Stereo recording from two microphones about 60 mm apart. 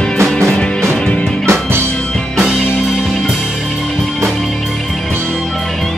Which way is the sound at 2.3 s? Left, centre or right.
Centre.